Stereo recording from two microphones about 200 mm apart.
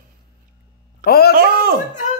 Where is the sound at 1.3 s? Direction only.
50° right (ahead or behind).